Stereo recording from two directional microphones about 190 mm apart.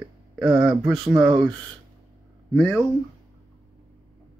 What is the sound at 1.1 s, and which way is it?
Speech, 20° right (ahead or behind).